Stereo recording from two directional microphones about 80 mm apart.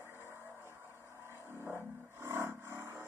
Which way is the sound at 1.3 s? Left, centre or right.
Right.